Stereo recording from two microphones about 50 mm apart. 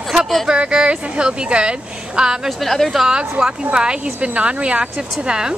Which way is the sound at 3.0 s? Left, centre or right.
Centre.